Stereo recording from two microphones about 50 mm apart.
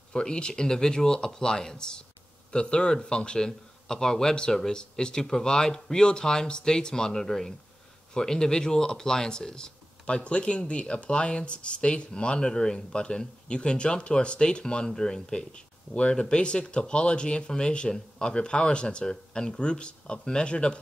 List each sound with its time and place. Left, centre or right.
0.1 s a man's voice: centre